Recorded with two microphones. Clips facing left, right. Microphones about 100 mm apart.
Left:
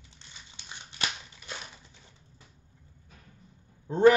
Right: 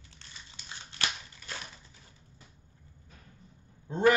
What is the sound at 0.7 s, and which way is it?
Scissors, 20° left (ahead or behind).